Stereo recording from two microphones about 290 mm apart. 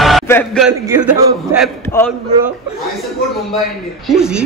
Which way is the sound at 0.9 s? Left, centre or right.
Centre.